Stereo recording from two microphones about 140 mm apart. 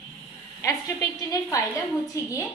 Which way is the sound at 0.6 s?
25° left (ahead or behind).